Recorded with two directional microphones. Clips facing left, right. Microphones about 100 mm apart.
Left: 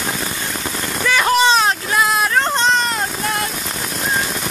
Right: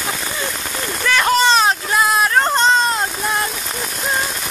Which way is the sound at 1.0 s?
5° left (ahead or behind).